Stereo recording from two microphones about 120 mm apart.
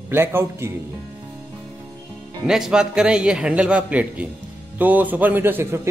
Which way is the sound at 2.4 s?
5° right (ahead or behind).